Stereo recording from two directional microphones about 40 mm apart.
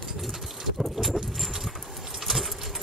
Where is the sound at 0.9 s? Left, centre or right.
Centre.